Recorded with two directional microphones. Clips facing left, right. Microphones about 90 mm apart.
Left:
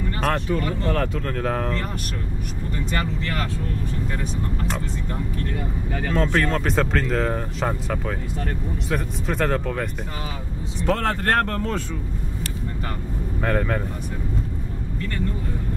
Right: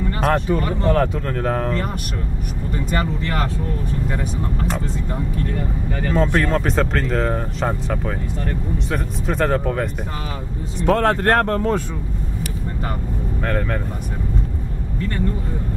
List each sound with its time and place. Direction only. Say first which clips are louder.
0.2 s speech: right 4 dB; 15° right (ahead or behind)
3.0 s speech: right 4 dB; 30° right (ahead or behind)
6.1 s speech: right 3 dB; 5° right (ahead or behind)
11.3 s speech: right 5 dB; 25° right (ahead or behind)
13.4 s speech: left 1 dB; 5° left (ahead or behind)